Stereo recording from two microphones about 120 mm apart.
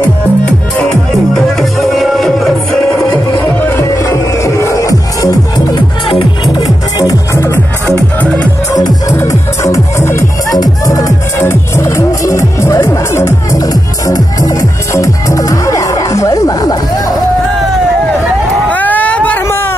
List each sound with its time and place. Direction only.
1.3 s music: centre (ahead or behind)
3.3 s music: 25° left (ahead or behind)
6.0 s music: 45° left (ahead or behind); by 7.6 s 25° left (ahead or behind)
7.8 s music: 10° left (ahead or behind)
9.1 s music: 25° left (ahead or behind)
18.7 s a sound: 15° left (ahead or behind)